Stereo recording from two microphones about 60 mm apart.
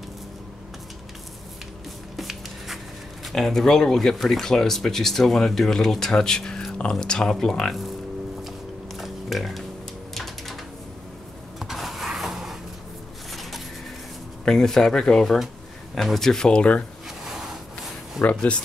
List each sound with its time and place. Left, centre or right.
2.1 s writing: centre
3.3 s speech: centre
8.9 s a sound: centre
11.6 s power windows: centre
13.3 s a sound: centre
14.4 s speech: centre
15.2 s speech: centre
18.2 s speech: left